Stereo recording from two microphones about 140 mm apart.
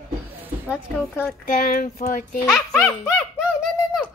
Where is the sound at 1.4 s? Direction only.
75° left (ahead or behind).